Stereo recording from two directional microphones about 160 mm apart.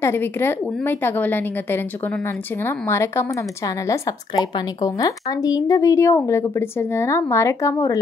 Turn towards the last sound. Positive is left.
turn(degrees=20)  # may be behind; listen again after turning